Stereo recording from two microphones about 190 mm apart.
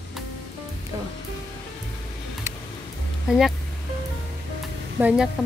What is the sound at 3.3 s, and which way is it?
Speech, centre (ahead or behind).